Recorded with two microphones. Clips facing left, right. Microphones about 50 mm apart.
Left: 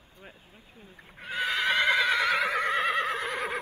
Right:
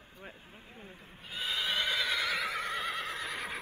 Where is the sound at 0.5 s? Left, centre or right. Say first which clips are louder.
Right 2 dB; right.